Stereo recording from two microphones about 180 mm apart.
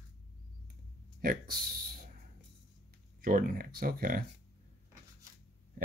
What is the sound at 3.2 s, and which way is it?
Speech, 50° right (ahead or behind).